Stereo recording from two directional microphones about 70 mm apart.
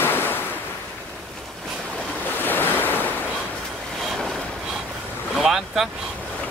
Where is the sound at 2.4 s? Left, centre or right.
Left.